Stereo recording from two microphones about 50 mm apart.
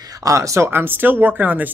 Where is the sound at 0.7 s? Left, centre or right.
Right.